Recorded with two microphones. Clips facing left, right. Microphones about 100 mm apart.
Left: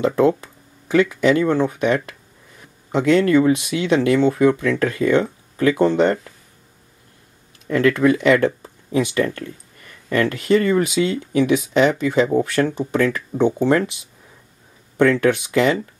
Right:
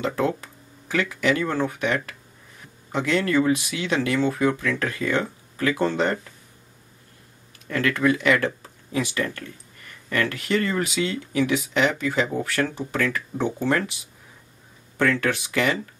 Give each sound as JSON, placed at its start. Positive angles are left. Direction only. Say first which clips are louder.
{"t": 0.0, "sound": "speech", "louder": "left 8 dB", "side_deg": 25}
{"t": 7.7, "sound": "speech", "louder": "left 6 dB", "side_deg": 25}
{"t": 15.0, "sound": "speech", "louder": "left 7 dB", "side_deg": 20}